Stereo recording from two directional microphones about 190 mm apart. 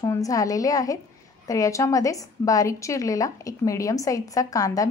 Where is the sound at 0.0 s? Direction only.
20° left (ahead or behind).